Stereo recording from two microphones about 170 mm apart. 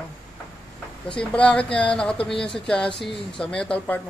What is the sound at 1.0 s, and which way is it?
Speech, 5° left (ahead or behind).